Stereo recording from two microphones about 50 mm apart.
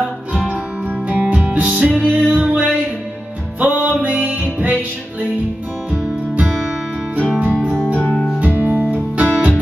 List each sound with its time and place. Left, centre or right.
0.3 s music: right
1.8 s music: right
7.2 s music: right
8.5 s music: right